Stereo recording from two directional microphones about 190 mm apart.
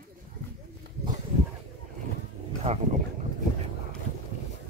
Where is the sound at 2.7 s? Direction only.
30° right (ahead or behind).